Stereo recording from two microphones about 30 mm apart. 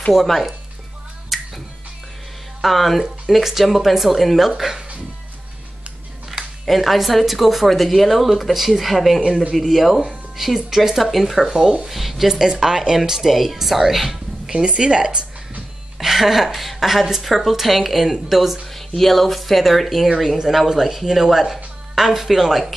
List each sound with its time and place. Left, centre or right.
0.1 s a woman's voice: centre
1.3 s music: centre
2.6 s a woman's voice: centre
6.6 s a woman's voice: centre
11.6 s speech: right
11.9 s a woman's voice: centre
12.3 s speech: centre
13.3 s speech: centre
14.5 s speech: right
16.0 s music: centre
16.4 s a woman's voice: centre
18.7 s a woman's voice: centre
20.4 s speech: centre